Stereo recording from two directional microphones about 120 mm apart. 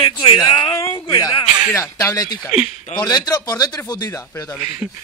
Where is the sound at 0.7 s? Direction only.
30° left (ahead or behind).